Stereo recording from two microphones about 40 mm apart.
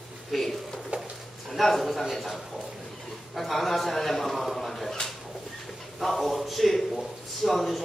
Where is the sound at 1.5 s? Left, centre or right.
Centre.